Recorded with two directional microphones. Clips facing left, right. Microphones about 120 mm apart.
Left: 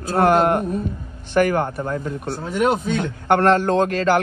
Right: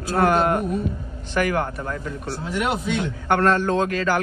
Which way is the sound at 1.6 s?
25° left (ahead or behind).